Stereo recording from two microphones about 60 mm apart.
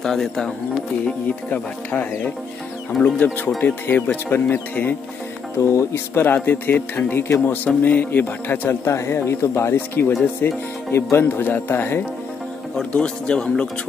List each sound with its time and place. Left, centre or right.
0.0 s a man's voice: centre
1.0 s speech: left
2.9 s speech: centre
3.6 s speech: left
5.6 s speech: left
6.2 s speech: left
7.6 s speech: left
8.6 s speech: left
10.0 s speech: left
10.4 s speech: left
12.9 s a man's voice: centre